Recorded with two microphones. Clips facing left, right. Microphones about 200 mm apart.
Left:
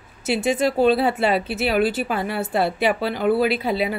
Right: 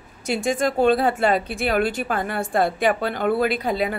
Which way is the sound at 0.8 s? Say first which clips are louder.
Right 1 dB; 45° right (ahead or behind).